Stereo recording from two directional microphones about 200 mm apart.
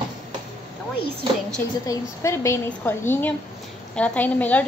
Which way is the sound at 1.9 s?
15° left (ahead or behind).